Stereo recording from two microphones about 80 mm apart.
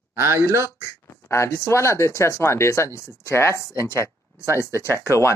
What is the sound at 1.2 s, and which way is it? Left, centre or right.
Speech, left.